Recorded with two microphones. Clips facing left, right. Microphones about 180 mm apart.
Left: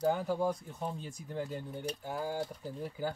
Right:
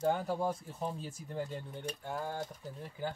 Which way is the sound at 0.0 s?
Centre (ahead or behind).